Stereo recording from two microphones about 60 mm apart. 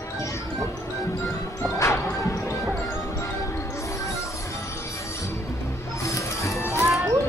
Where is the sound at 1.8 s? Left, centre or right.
Left.